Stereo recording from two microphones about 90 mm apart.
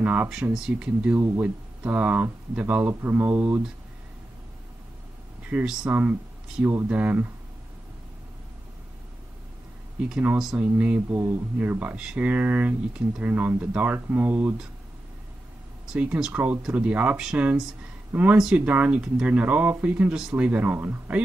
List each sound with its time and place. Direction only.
0.0 s speech: 20° right (ahead or behind)
0.3 s speech: 5° right (ahead or behind)
1.1 s speech: 25° right (ahead or behind)
5.5 s speech: 15° right (ahead or behind)
10.0 s speech: 10° right (ahead or behind)
12.0 s speech: 10° right (ahead or behind)
12.3 s speech: 20° right (ahead or behind)
15.9 s speech: 10° right (ahead or behind)